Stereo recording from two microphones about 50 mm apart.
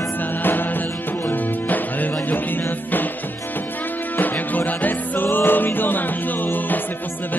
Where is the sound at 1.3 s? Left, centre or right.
Left.